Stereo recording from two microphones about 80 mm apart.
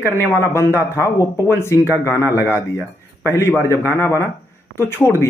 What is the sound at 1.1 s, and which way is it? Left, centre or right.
Speech, left.